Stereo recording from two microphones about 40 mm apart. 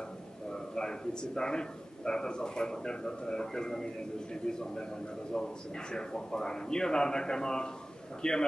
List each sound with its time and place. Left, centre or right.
0.7 s a man's voice: centre